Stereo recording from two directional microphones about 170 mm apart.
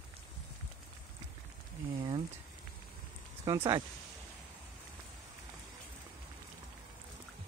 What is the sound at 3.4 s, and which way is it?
Speech, 20° right (ahead or behind).